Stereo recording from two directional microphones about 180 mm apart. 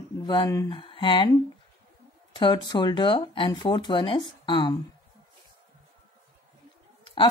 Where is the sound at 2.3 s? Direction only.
25° left (ahead or behind).